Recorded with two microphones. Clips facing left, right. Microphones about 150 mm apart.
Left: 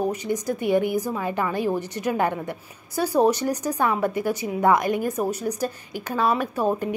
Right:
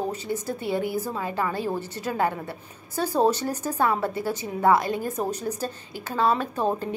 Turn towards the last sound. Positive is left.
turn(degrees=10)  # may be behind; listen again after turning